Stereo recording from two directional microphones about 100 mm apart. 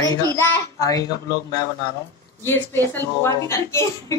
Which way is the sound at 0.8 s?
35° left (ahead or behind).